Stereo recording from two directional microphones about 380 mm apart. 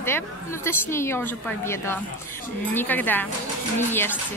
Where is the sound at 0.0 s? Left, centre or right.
Centre.